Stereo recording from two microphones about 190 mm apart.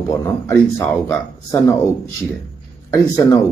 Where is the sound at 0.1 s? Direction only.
15° left (ahead or behind).